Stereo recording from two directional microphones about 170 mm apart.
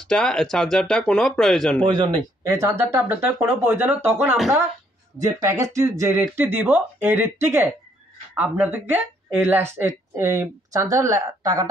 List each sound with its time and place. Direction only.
0.1 s speech: 5° left (ahead or behind)
1.8 s a woman's voice: 25° right (ahead or behind)